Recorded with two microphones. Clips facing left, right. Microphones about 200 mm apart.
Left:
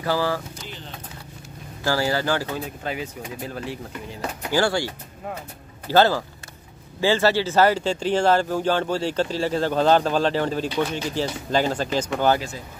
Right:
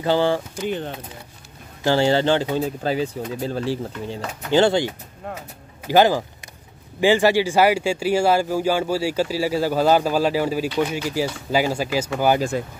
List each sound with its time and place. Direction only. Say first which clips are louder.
0.0 s speech: right 5 dB; 25° right (ahead or behind)
0.7 s speech: right 13 dB; 55° right (ahead or behind)
1.8 s speech: right 5 dB; 25° right (ahead or behind)
12.4 s speech: right 9 dB; 55° right (ahead or behind)